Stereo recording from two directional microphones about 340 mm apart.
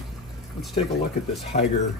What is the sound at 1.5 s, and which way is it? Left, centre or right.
Speech, left.